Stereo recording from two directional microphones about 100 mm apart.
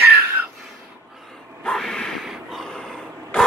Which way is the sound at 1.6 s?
5° left (ahead or behind).